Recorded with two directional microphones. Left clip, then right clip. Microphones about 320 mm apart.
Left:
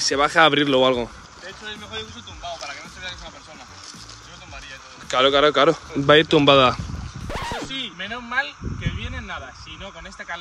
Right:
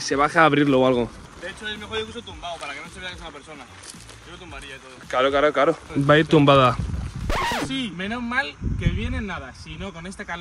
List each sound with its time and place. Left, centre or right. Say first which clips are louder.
0.0 s speech: left 1 dB; left
5.0 s speech: left 3 dB; left
7.2 s a sound: right 5 dB; centre
8.1 s speech: even; centre